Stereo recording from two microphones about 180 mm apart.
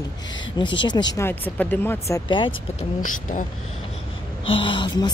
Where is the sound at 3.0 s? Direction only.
45° left (ahead or behind).